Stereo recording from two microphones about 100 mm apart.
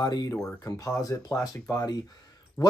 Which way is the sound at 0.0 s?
40° left (ahead or behind).